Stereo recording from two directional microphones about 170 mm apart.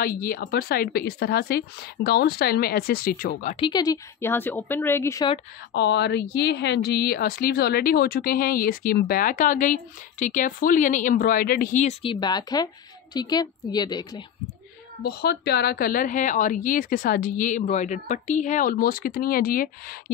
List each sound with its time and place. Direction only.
0.0 s a woman's voice: 60° left (ahead or behind)
3.5 s speech: 25° left (ahead or behind)
5.8 s a woman's voice: 85° left; by 14.2 s 25° left (ahead or behind)
15.0 s speech: 70° left (ahead or behind)